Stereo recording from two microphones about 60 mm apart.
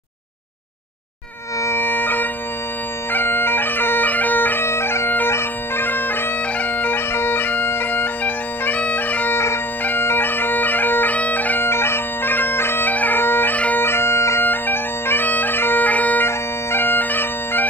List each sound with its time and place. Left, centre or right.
1.8 s music: left
3.1 s bagpipes: left
14.4 s bagpipes: left
16.3 s bagpipes: left